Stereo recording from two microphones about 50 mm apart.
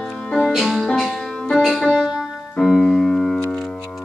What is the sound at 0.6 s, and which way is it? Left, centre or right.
Music, centre.